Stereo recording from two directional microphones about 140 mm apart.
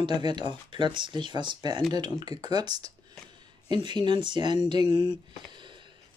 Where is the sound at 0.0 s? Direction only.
35° right (ahead or behind).